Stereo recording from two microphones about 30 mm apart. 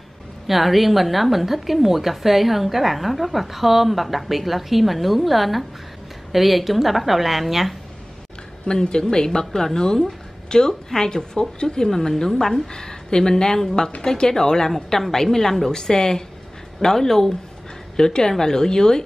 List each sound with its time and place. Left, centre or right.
0.5 s a woman's voice: centre
8.9 s a woman's voice: left
9.9 s a sound: centre
11.0 s a woman's voice: left
12.1 s a woman's voice: centre
15.7 s a woman's voice: left